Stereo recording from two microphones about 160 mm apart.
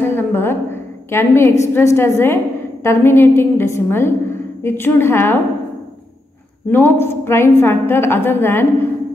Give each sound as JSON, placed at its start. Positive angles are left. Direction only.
{"t": 0.0, "sound": "a woman's voice", "side_deg": 15}
{"t": 6.7, "sound": "a woman's voice", "side_deg": 15}